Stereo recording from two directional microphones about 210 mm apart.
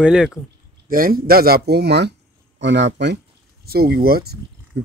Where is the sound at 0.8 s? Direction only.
45° right (ahead or behind).